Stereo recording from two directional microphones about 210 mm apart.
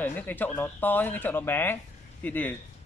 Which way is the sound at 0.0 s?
10° left (ahead or behind).